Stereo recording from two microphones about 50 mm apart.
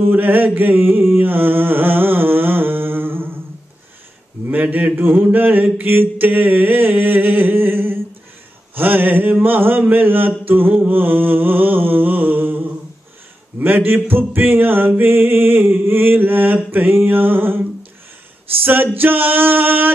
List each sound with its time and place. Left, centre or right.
0.1 s mantra: right
0.6 s a sound: right
4.5 s speech: right
5.2 s mantra: right
8.7 s music: right
10.9 s a sound: right
13.6 s music: right
18.6 s mantra: right